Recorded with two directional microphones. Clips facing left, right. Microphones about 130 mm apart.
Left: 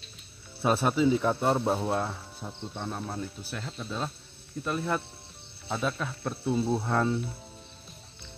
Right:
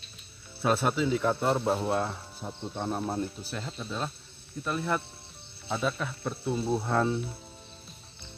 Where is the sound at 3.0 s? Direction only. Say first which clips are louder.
Right 4 dB; 10° right (ahead or behind).